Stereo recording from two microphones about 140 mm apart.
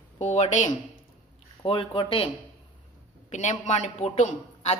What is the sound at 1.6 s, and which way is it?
Speech, 35° left (ahead or behind).